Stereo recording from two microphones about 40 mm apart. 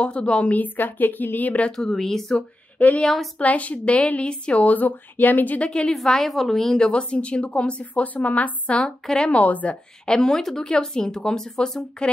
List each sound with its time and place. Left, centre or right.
0.0 s a woman's voice: left
0.5 s speech: left
1.8 s speech: centre
3.3 s a woman's voice: left
4.7 s speech: left
5.6 s a woman's voice: left
6.0 s speech: centre
6.9 s a woman's voice: left
9.0 s speech: centre
9.3 s a woman's voice: left
10.0 s speech: left